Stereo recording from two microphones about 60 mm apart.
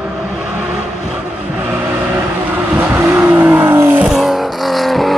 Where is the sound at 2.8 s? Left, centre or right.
Right.